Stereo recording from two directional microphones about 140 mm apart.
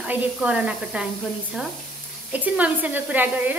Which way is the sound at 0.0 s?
10° right (ahead or behind).